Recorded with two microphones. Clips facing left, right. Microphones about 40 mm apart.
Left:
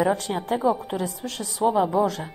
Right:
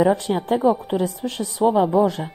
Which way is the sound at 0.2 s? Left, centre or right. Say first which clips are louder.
Right 5 dB; right.